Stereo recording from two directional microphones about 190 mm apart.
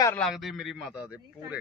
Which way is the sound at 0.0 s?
10° left (ahead or behind).